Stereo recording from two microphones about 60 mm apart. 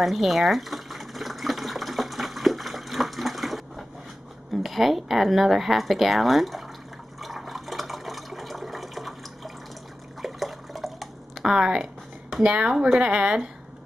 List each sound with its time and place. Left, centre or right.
0.0 s water: centre
4.6 s speech: centre
7.2 s water: centre
10.2 s drip: centre
11.5 s speech: centre
12.7 s a woman's voice: centre
13.0 s a woman's voice: centre